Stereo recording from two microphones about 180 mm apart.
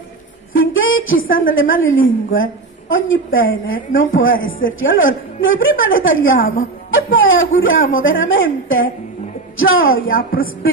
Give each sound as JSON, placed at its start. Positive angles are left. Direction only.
{"t": 0.5, "sound": "a sound", "side_deg": 90}
{"t": 1.5, "sound": "a woman's voice", "side_deg": 90}
{"t": 10.0, "sound": "a woman's voice", "side_deg": 55}